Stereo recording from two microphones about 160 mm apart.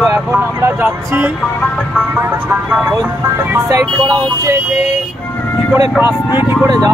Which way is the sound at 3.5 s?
20° right (ahead or behind).